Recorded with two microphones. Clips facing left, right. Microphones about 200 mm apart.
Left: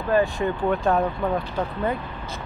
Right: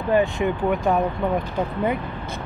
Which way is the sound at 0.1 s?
20° right (ahead or behind).